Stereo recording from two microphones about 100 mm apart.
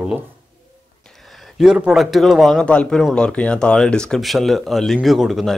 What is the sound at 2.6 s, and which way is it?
Speech, 10° left (ahead or behind).